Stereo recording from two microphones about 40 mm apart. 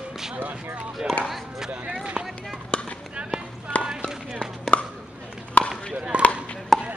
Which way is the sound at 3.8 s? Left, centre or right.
Right.